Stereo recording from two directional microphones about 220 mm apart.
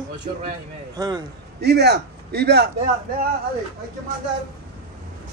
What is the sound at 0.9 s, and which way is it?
Speech, 20° right (ahead or behind).